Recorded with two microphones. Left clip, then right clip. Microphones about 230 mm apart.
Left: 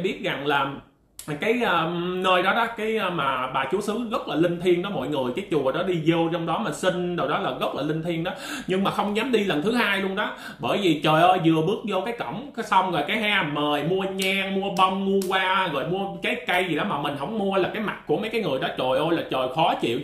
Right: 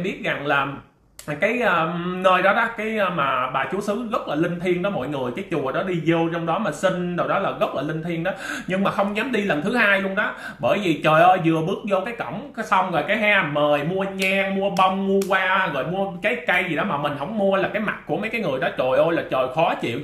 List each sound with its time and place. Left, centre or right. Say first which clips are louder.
0.0 s speech: right 1 dB; centre